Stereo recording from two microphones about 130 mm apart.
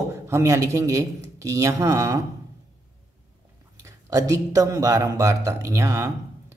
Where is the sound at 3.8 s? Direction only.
25° right (ahead or behind).